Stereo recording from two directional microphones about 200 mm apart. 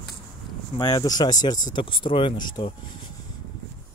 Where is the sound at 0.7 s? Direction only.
20° left (ahead or behind).